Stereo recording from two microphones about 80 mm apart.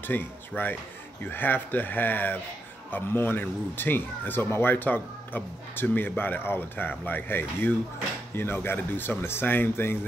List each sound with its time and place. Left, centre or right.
0.0 s speech: left